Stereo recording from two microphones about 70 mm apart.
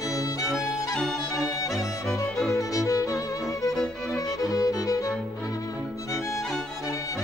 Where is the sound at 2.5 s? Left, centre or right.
Left.